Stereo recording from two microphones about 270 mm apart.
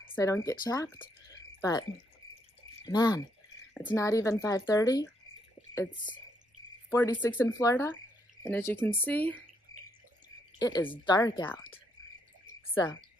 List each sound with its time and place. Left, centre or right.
0.0 s speech: centre
6.9 s speech: centre
10.6 s speech: centre